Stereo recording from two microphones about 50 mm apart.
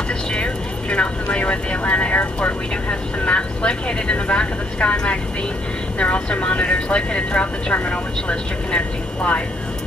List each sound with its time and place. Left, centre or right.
0.3 s speech: left